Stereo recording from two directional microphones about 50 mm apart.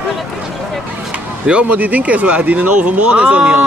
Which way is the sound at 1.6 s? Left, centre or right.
Right.